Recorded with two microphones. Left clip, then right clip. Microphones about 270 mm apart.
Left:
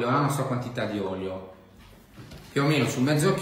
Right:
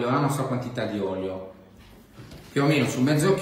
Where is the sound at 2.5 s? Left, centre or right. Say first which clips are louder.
Right 2 dB; centre.